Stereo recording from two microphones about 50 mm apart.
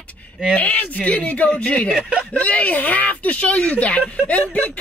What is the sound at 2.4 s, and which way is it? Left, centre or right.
Speech, left.